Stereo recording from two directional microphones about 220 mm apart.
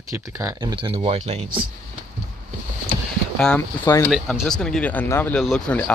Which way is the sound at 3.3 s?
5° left (ahead or behind).